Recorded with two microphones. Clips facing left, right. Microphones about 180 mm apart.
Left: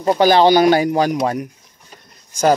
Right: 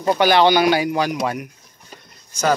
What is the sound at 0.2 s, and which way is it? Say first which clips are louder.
Speech: left 4 dB; 35° left (ahead or behind).